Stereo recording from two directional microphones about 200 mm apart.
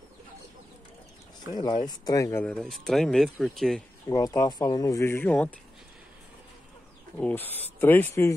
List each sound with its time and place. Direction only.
1.5 s speech: 20° left (ahead or behind)
2.5 s speech: centre (ahead or behind)
4.1 s speech: 20° left (ahead or behind)
7.2 s speech: 10° left (ahead or behind)